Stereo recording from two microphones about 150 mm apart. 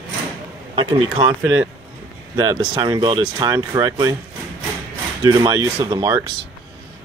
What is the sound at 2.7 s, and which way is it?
Speech, 30° right (ahead or behind).